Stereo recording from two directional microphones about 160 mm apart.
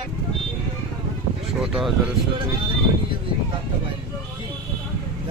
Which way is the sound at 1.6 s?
Centre (ahead or behind).